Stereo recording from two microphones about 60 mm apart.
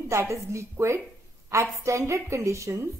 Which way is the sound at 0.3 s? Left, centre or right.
Right.